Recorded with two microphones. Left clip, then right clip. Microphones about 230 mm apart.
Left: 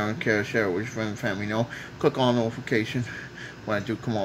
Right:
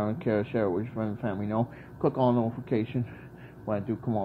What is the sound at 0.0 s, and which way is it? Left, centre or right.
Speech, centre.